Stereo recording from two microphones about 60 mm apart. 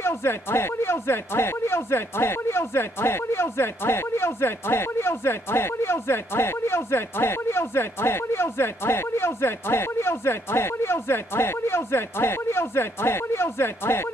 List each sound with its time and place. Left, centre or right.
0.0 s speech: left